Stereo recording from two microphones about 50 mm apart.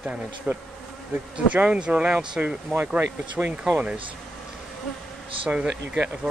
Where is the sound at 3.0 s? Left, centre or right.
Right.